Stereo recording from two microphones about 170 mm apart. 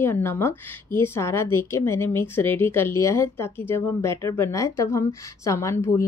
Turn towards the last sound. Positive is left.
turn(degrees=15)  # may be behind; listen again after turning